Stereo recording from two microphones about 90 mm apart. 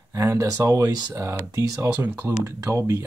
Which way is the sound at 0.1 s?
35° right (ahead or behind).